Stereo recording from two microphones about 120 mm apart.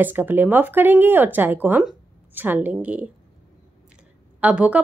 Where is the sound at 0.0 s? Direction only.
15° right (ahead or behind).